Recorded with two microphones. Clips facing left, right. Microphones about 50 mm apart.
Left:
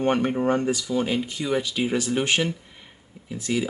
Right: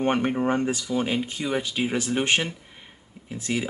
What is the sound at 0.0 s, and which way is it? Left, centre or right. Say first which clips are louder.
Speech: left 1 dB; centre.